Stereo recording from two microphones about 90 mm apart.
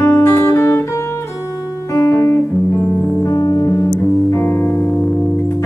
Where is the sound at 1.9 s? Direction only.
35° left (ahead or behind).